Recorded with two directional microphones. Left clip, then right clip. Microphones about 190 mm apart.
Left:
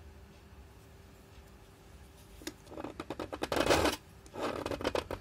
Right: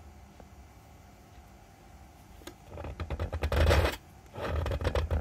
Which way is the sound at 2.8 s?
30° left (ahead or behind).